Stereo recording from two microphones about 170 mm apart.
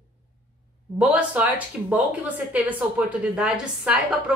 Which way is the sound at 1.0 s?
10° right (ahead or behind).